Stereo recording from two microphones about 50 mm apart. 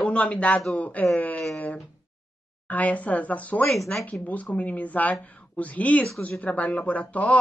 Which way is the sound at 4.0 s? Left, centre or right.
Left.